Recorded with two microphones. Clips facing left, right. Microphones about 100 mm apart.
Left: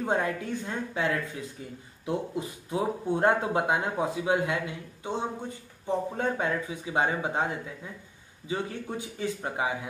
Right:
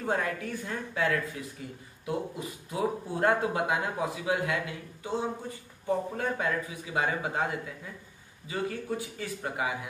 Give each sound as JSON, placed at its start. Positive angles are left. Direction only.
{"t": 0.0, "sound": "speech", "side_deg": 25}